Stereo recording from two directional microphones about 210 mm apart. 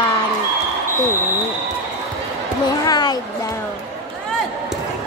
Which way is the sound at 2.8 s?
20° left (ahead or behind).